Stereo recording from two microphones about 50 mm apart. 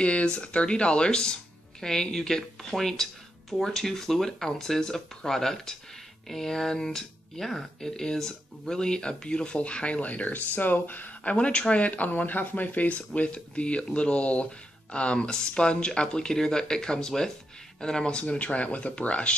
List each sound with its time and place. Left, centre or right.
0.0 s a woman's voice: left